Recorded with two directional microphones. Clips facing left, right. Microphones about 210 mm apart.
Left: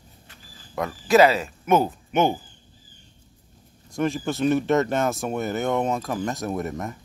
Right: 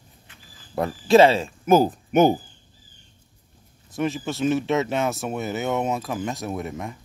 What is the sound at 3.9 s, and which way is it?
Speech, centre (ahead or behind).